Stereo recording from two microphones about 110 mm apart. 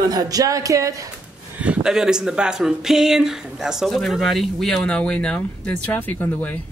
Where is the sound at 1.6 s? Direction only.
10° right (ahead or behind); by 6.5 s 15° left (ahead or behind).